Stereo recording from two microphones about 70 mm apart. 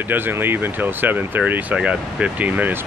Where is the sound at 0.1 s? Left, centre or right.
Right.